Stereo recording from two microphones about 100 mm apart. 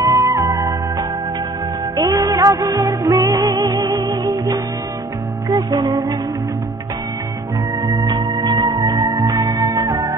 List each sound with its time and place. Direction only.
0.0 s music: 35° right (ahead or behind)
3.9 s music: 45° right (ahead or behind)
7.8 s music: 40° right (ahead or behind)